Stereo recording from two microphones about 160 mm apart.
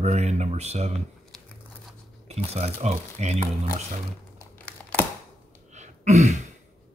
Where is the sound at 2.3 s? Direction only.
40° right (ahead or behind).